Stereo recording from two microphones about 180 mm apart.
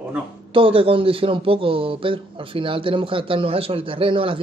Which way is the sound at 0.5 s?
30° right (ahead or behind).